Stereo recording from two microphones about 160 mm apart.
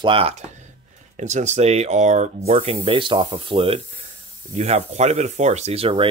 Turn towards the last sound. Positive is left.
turn(degrees=-35)  # may be behind; listen again after turning